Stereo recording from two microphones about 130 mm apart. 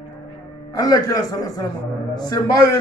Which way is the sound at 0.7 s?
30° left (ahead or behind).